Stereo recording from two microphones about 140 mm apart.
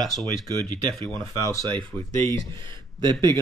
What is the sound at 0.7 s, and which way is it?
Speech, 10° left (ahead or behind).